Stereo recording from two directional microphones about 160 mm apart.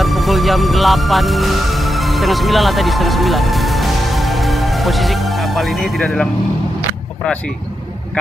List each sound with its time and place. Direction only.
0.0 s speech: centre (ahead or behind)